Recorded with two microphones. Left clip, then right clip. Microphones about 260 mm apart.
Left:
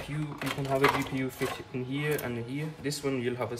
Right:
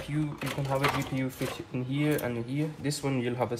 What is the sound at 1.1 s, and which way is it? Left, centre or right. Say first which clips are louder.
Speech: left 1 dB; centre.